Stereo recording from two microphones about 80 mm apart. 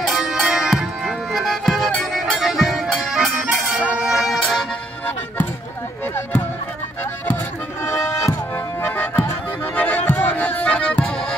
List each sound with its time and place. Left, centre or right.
0.0 s music: centre
4.4 s music: centre
7.8 s music: left
8.8 s music: left
9.8 s accordion: left